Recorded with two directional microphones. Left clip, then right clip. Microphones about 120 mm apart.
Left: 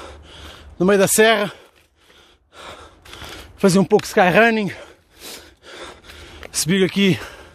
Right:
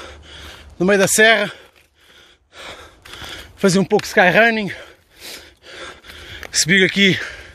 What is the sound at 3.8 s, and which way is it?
Speech, 55° left (ahead or behind).